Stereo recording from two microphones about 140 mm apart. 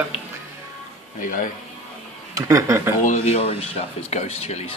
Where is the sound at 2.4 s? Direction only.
20° right (ahead or behind).